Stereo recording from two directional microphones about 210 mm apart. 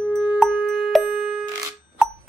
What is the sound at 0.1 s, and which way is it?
Music, 5° right (ahead or behind).